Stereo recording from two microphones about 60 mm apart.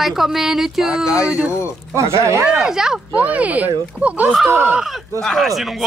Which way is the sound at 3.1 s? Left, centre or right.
Right.